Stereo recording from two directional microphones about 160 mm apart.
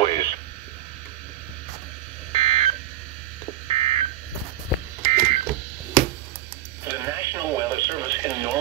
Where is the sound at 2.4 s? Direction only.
40° right (ahead or behind).